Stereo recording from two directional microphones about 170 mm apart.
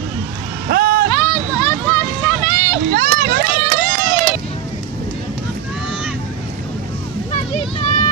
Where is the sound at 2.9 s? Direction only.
60° right (ahead or behind).